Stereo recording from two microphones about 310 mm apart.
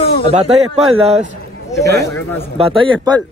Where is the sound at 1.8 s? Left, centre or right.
Right.